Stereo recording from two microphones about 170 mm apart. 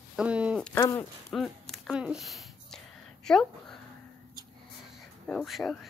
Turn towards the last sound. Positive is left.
turn(degrees=0)  # may be behind; listen again after turning